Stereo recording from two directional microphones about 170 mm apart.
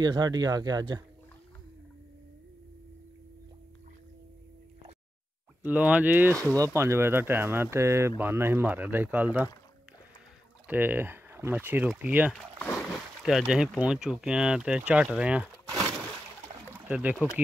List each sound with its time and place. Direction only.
0.0 s speech: 25° right (ahead or behind)
5.6 s speech: 10° right (ahead or behind)
10.7 s speech: 10° right (ahead or behind)
16.8 s speech: 10° right (ahead or behind)